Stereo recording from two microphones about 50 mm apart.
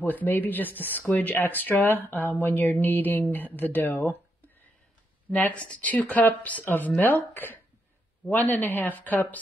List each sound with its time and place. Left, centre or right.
0.0 s speech: left
5.3 s speech: left
8.3 s speech: left